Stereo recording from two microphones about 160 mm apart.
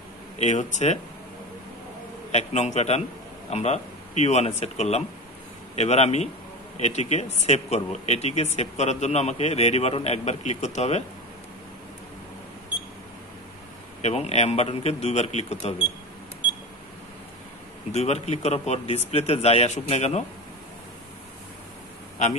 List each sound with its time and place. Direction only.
0.4 s speech: 45° left (ahead or behind)
2.3 s a man's voice: 45° left (ahead or behind)
14.0 s a man's voice: 45° left (ahead or behind)
17.9 s a man's voice: 40° left (ahead or behind)